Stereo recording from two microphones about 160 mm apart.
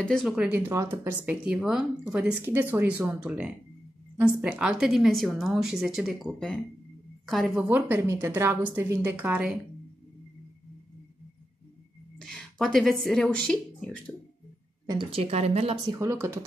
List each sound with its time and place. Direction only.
0.0 s a woman's voice: centre (ahead or behind)
0.6 s a woman's voice: 15° right (ahead or behind)
7.7 s speech: 15° right (ahead or behind)
12.2 s speech: 5° left (ahead or behind)
14.9 s a woman's voice: 35° right (ahead or behind)
15.9 s speech: 20° right (ahead or behind)